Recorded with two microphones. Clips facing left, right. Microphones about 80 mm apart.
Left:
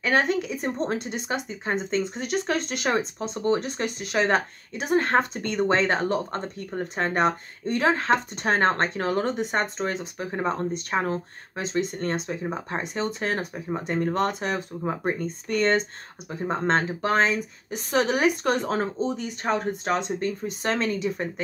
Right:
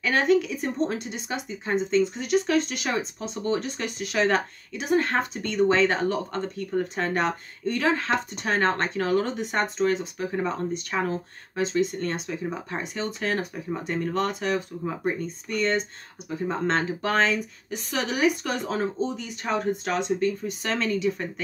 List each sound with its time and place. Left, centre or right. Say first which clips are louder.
0.0 s speech: right 2 dB; left
15.4 s speech: left 3 dB; left
16.3 s speech: left 1 dB; left
17.7 s speech: left 4 dB; left